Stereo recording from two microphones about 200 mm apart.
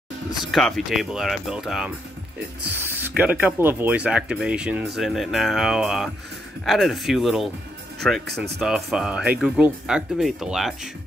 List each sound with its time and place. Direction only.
0.3 s speech: centre (ahead or behind)
3.2 s speech: 10° right (ahead or behind)
8.5 s speech: 5° right (ahead or behind)